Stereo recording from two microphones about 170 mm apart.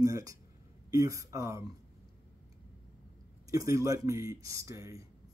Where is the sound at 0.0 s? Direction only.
20° right (ahead or behind).